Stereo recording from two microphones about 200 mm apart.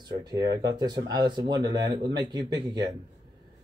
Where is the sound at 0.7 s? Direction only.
20° right (ahead or behind).